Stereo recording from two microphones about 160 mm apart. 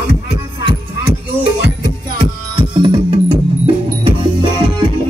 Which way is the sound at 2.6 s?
30° right (ahead or behind).